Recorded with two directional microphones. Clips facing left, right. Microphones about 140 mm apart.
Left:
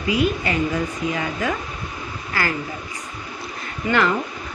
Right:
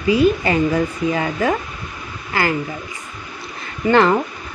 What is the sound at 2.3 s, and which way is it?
Speech, 20° right (ahead or behind).